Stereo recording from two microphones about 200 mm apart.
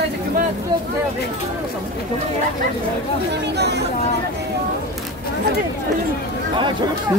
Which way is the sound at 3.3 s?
55° right (ahead or behind).